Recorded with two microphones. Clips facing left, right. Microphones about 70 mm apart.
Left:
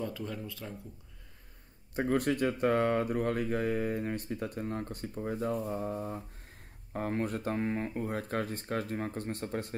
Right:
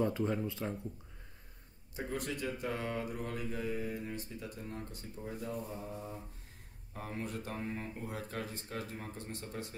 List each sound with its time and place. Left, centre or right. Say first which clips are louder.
0.0 s speech: right 5 dB; right
2.0 s speech: left 10 dB; left